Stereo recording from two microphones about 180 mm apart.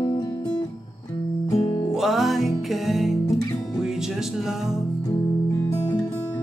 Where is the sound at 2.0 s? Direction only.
Centre (ahead or behind).